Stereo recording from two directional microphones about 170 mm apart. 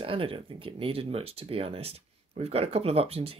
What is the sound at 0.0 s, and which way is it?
Speech, 30° right (ahead or behind).